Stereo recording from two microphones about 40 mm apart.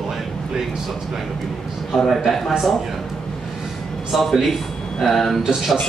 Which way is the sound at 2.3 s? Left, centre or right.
Centre.